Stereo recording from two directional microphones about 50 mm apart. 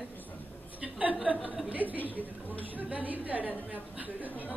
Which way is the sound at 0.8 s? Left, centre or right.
Right.